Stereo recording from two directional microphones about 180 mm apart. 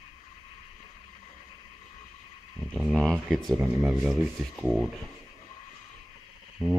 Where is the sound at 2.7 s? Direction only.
5° left (ahead or behind).